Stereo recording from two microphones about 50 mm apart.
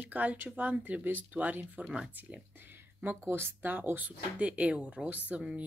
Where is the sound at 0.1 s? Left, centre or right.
Right.